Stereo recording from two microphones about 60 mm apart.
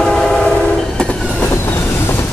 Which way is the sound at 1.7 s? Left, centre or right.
Left.